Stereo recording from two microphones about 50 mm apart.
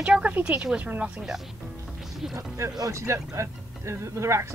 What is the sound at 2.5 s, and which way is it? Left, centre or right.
Speech, right.